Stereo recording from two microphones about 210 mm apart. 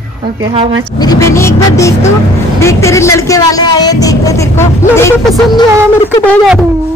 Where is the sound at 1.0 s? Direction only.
15° left (ahead or behind).